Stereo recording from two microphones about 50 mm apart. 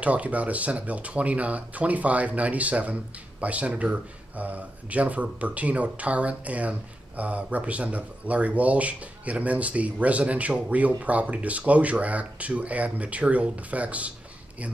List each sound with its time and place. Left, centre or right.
0.0 s speech: right